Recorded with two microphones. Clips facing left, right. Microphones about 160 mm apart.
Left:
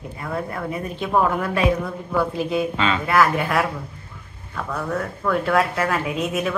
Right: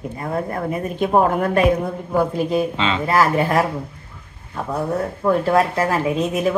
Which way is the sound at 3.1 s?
35° right (ahead or behind).